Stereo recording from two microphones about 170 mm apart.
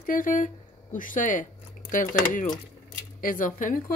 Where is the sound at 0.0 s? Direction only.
55° left (ahead or behind).